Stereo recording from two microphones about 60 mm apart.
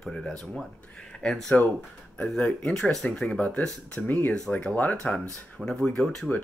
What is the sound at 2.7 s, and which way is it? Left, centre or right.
Speech, centre.